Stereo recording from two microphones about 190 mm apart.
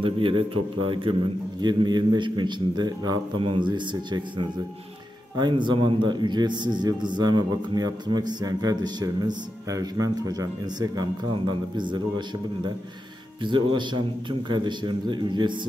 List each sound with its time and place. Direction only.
0.0 s a man's voice: 25° right (ahead or behind)
13.4 s a man's voice: 25° right (ahead or behind)